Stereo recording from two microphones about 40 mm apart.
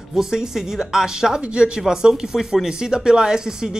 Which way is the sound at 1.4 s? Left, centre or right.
Right.